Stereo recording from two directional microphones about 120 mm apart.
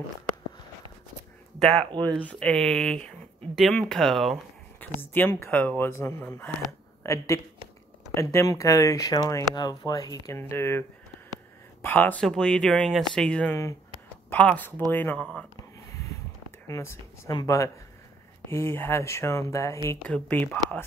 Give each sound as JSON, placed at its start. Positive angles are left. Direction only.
{"t": 1.8, "sound": "speech", "side_deg": -40}
{"t": 2.2, "sound": "speech", "side_deg": 10}
{"t": 4.7, "sound": "speech", "side_deg": 15}
{"t": 15.9, "sound": "a sound", "side_deg": 25}
{"t": 16.6, "sound": "speech", "side_deg": 25}
{"t": 20.0, "sound": "speech", "side_deg": 10}